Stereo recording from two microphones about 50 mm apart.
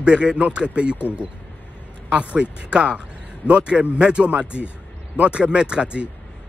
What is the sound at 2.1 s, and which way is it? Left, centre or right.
Speech, right.